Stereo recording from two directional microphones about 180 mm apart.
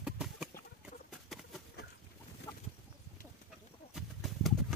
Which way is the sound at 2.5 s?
20° left (ahead or behind).